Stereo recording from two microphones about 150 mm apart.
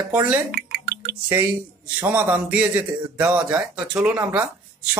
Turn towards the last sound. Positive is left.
turn(degrees=-10)  # may be behind; listen again after turning